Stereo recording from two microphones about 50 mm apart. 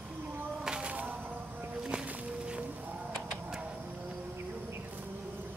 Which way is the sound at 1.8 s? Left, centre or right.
Centre.